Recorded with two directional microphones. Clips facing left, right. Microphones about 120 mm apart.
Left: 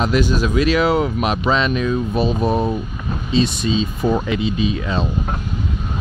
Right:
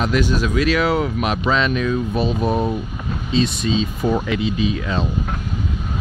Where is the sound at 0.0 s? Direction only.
30° left (ahead or behind).